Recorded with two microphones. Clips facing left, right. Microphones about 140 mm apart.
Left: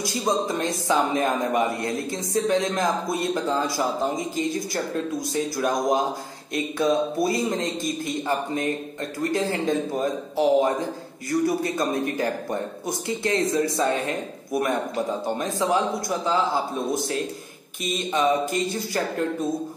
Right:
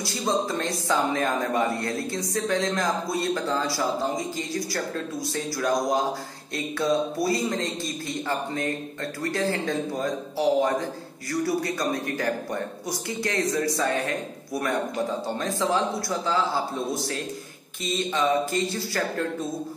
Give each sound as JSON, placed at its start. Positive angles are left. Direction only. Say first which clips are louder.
{"t": 0.0, "sound": "a man's voice", "louder": "left 2 dB", "side_deg": 15}
{"t": 17.8, "sound": "a man's voice", "louder": "left 2 dB", "side_deg": 15}